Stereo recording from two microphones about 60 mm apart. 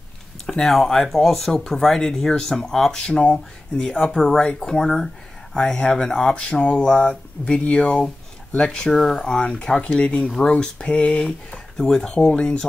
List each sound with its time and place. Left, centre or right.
0.5 s speech: centre